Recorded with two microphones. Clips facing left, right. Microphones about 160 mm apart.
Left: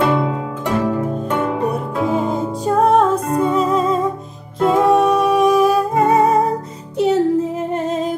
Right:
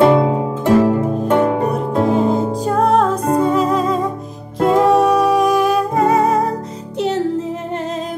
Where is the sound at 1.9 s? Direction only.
30° right (ahead or behind).